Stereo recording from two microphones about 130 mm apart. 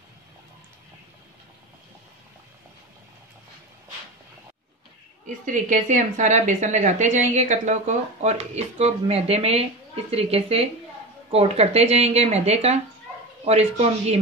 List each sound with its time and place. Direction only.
5.2 s a woman's voice: 80° right; by 14.2 s 55° right (ahead or behind)